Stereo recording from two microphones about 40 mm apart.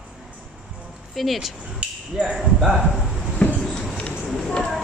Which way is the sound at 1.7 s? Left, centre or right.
Centre.